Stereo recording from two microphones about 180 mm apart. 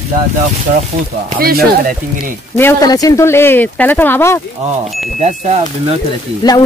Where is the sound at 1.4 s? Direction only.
55° right (ahead or behind).